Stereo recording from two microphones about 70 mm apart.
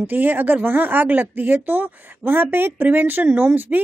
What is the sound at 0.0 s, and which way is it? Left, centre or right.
A woman's voice, right.